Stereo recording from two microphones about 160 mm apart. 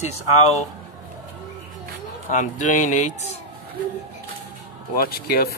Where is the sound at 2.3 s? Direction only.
50° left (ahead or behind).